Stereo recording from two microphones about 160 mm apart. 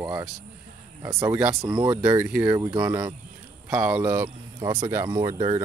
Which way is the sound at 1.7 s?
25° right (ahead or behind).